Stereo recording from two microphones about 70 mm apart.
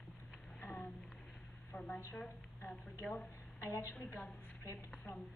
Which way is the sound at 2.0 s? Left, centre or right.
Left.